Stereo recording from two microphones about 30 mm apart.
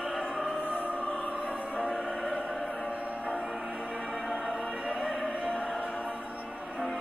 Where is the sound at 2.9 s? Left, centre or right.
Right.